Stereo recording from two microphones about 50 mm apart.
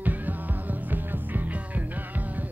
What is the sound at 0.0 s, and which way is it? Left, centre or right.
Music, right.